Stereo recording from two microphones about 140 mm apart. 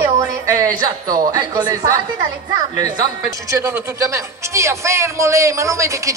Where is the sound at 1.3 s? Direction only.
25° right (ahead or behind).